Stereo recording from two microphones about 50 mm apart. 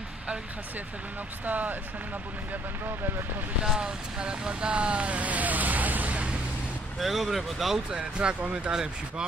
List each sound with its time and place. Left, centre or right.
1.4 s speech: right
3.6 s speech: centre
7.0 s speech: centre
7.9 s speech: right